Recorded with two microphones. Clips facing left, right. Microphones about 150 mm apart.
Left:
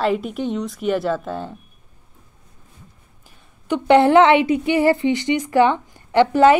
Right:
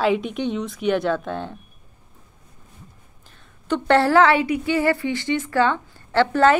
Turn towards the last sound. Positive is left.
turn(degrees=15)  # may be behind; listen again after turning